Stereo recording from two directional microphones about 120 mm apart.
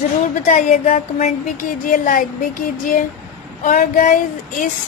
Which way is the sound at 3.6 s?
90° left.